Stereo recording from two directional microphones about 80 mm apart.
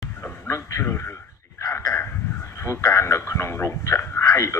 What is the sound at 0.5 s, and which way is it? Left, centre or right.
Radio, left.